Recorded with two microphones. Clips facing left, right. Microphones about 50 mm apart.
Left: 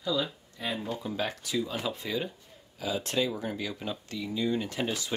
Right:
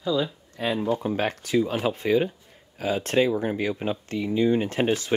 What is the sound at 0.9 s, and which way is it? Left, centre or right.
Speech, right.